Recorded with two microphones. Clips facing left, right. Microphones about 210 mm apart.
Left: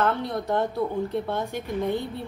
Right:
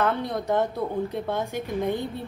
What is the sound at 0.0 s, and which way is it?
Speech, 15° right (ahead or behind).